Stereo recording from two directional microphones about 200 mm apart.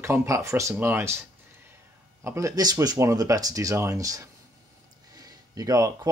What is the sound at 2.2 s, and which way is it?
Speech, 15° right (ahead or behind).